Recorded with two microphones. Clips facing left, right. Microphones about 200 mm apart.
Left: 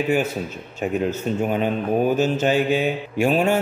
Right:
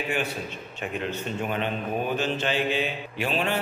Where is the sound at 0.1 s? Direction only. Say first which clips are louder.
Left 8 dB; 40° left (ahead or behind).